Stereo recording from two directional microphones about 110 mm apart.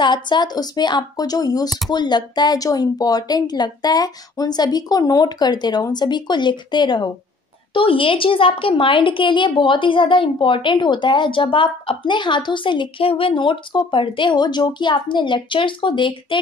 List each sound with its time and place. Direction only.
0.0 s speech: 45° left (ahead or behind)
7.7 s a woman's voice: 55° left (ahead or behind)